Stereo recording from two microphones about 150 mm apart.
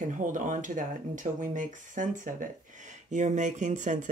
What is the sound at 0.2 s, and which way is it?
Speech, 60° right (ahead or behind).